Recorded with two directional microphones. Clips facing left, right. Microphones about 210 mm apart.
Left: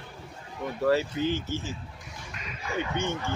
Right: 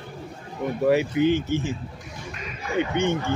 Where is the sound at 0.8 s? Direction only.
15° right (ahead or behind).